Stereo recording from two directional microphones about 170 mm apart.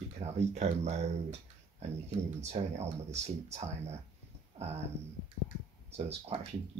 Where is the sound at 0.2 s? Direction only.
40° right (ahead or behind).